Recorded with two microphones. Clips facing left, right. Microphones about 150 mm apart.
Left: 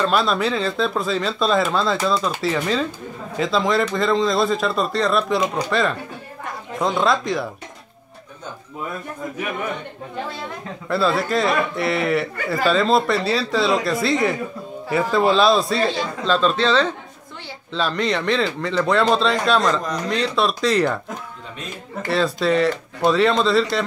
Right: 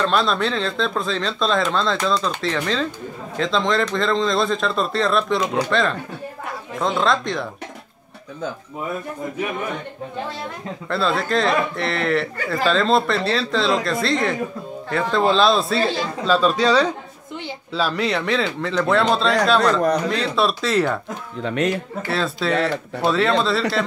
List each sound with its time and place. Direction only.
0.0 s speech: 5° left (ahead or behind)
10.9 s speech: 5° left (ahead or behind)
21.4 s speech: 75° right (ahead or behind)
22.0 s speech: centre (ahead or behind)